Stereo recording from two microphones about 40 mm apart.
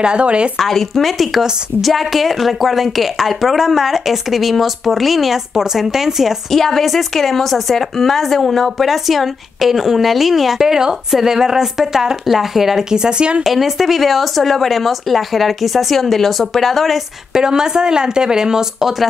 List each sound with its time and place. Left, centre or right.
0.0 s speech: right
0.6 s a woman's voice: centre
6.5 s a woman's voice: centre
12.9 s speech: right
13.4 s a woman's voice: centre
17.3 s speech: centre